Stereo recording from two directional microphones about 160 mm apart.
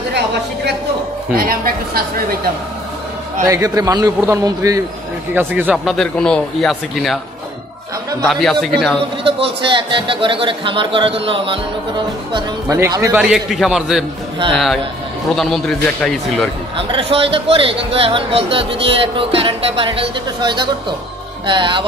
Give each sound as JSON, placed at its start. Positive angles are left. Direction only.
{"t": 1.3, "sound": "a man's voice", "side_deg": -65}
{"t": 3.4, "sound": "a man's voice", "side_deg": -20}
{"t": 5.9, "sound": "speech", "side_deg": 5}
{"t": 8.2, "sound": "speech", "side_deg": 0}
{"t": 9.4, "sound": "a man's voice", "side_deg": -30}
{"t": 12.7, "sound": "speech", "side_deg": -15}
{"t": 13.2, "sound": "speech", "side_deg": 0}
{"t": 16.7, "sound": "speech", "side_deg": -35}